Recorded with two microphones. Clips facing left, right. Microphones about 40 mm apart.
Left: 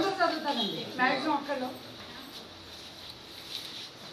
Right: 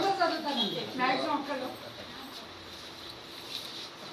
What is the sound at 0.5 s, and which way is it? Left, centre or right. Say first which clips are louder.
Speech: right 1 dB; right.